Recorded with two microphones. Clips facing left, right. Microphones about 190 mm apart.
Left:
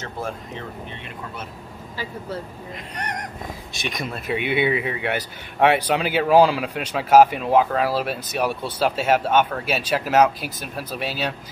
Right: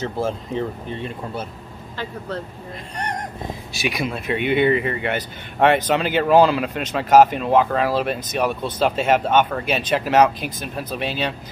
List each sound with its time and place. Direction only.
0.0 s speech: 30° right (ahead or behind)
2.0 s speech: 10° left (ahead or behind)
3.0 s speech: 30° right (ahead or behind)
3.8 s speech: centre (ahead or behind)